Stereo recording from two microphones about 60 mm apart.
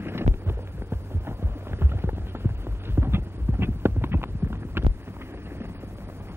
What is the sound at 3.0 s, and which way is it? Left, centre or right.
Clip-clop, right.